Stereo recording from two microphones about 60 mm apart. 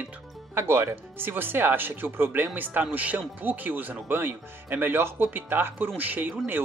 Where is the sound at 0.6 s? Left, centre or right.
Right.